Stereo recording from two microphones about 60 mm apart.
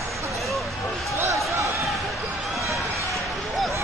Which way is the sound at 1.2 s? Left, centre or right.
Right.